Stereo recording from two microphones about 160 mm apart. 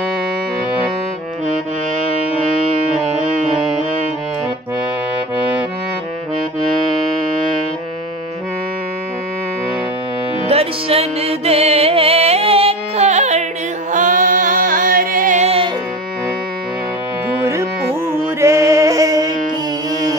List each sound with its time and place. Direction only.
10.5 s music: 40° right (ahead or behind)
13.9 s music: 55° right (ahead or behind)
15.4 s music: 35° right (ahead or behind)
18.1 s music: 20° right (ahead or behind)